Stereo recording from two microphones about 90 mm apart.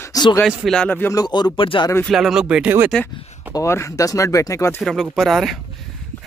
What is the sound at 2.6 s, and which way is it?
Speech, 20° right (ahead or behind).